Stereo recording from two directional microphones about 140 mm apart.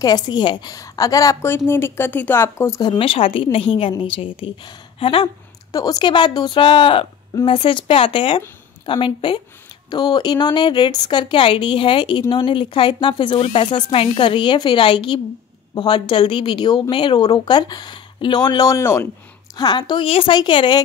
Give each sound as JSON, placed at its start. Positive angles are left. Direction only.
{"t": 0.0, "sound": "a woman's voice", "side_deg": 30}
{"t": 2.8, "sound": "speech", "side_deg": 35}
{"t": 5.7, "sound": "speech", "side_deg": 25}